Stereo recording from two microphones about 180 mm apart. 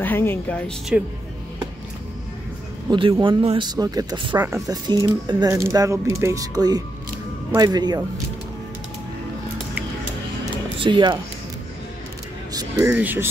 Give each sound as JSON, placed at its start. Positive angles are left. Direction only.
{"t": 0.0, "sound": "speech", "side_deg": 10}
{"t": 2.9, "sound": "speech", "side_deg": -30}
{"t": 10.8, "sound": "speech", "side_deg": -25}
{"t": 12.5, "sound": "speech", "side_deg": -15}